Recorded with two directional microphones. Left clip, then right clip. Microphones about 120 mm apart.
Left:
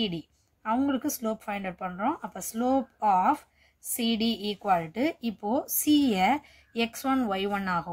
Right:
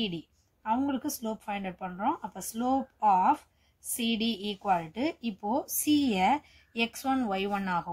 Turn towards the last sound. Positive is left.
turn(degrees=20)  # may be behind; listen again after turning